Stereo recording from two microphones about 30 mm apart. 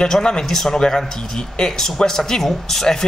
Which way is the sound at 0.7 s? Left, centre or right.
Left.